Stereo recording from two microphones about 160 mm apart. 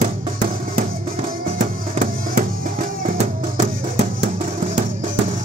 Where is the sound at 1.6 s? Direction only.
50° right (ahead or behind).